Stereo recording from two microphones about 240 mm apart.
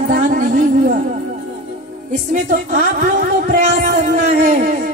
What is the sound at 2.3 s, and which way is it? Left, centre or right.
Speech, right.